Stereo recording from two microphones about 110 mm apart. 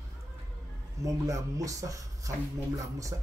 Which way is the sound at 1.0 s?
30° right (ahead or behind).